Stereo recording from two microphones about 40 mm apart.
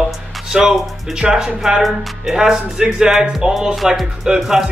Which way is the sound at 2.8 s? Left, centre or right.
Centre.